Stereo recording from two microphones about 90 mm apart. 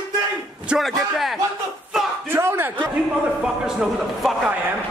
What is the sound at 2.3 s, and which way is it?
Speech, 25° right (ahead or behind).